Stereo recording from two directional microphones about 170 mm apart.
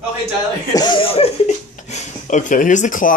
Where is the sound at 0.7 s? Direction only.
25° left (ahead or behind); by 3.1 s 50° left (ahead or behind).